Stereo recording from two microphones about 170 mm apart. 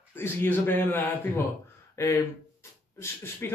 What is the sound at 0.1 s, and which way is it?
Speech, 15° left (ahead or behind).